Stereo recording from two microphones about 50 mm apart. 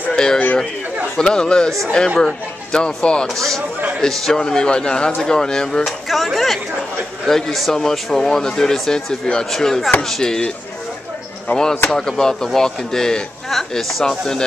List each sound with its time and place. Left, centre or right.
0.1 s a sound: centre
1.1 s speech: centre
1.7 s speech: centre
2.1 s speech: centre
11.9 s speech: centre